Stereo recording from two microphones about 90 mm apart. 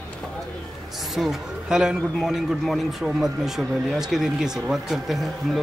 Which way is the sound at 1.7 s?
5° right (ahead or behind).